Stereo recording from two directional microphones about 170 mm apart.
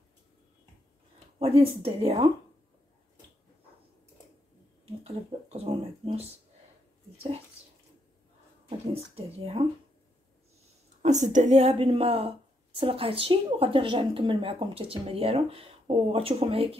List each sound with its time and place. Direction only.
1.4 s a woman's voice: 35° right (ahead or behind)
5.0 s speech: 40° right (ahead or behind)
8.6 s a woman's voice: 35° right (ahead or behind)
11.0 s a woman's voice: 45° right (ahead or behind)